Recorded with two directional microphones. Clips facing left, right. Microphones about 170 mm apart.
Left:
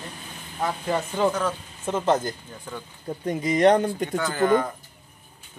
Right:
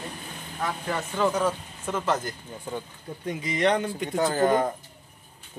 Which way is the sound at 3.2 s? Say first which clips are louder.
Left 6 dB; 45° left (ahead or behind).